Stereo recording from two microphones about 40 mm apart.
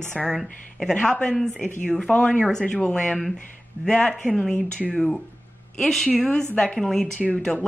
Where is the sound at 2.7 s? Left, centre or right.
Left.